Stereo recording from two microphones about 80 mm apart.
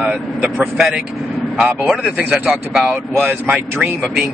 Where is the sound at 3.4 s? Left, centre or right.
Centre.